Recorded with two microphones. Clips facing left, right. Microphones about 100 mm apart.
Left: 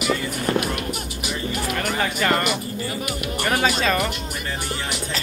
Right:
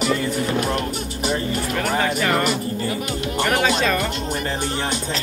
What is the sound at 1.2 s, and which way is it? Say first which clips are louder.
Music: right 6 dB; 35° right (ahead or behind).